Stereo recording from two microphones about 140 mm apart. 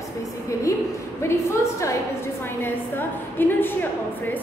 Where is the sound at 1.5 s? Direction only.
20° left (ahead or behind).